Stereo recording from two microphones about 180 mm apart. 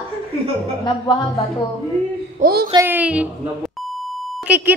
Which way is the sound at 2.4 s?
55° right (ahead or behind).